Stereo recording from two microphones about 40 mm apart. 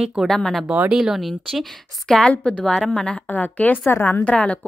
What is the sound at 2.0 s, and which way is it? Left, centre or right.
Speech, centre.